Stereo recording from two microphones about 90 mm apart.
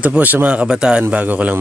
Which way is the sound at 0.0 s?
15° right (ahead or behind).